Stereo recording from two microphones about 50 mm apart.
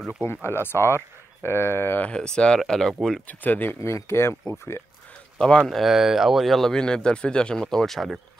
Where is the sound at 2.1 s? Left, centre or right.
Centre.